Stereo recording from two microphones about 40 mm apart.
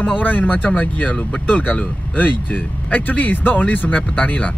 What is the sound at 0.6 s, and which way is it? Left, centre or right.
Speech, left.